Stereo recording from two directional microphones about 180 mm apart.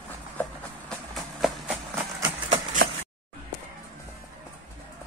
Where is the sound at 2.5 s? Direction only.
45° right (ahead or behind).